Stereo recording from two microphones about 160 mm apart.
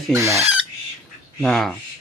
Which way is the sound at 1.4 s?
Centre (ahead or behind).